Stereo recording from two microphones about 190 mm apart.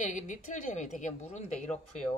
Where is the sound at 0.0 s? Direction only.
40° left (ahead or behind).